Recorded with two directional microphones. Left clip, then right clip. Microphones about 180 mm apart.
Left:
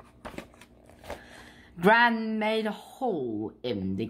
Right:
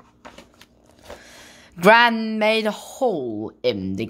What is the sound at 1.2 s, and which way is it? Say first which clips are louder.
A woman's voice: right 5 dB; 40° right (ahead or behind).